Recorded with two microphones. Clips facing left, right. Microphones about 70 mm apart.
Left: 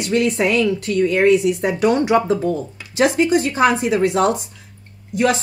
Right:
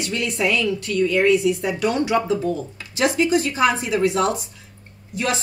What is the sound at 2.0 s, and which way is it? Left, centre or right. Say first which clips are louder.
Speech: left 4 dB; left.